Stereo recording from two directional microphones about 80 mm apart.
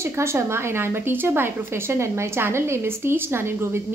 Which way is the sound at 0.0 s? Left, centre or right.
Right.